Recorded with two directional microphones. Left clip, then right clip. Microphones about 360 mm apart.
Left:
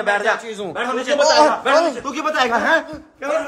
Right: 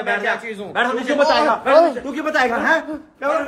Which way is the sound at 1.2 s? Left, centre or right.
Centre.